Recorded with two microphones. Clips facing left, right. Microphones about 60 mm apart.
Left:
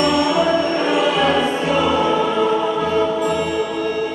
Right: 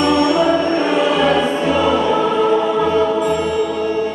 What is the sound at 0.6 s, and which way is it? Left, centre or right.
Music, right.